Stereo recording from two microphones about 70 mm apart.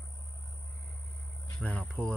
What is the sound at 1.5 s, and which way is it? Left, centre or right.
Speech, centre.